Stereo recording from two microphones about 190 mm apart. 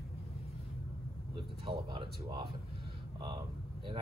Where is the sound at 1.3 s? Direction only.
25° right (ahead or behind).